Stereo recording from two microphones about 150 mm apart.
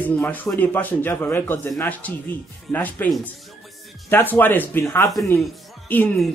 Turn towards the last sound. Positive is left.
turn(degrees=10)  # may be behind; listen again after turning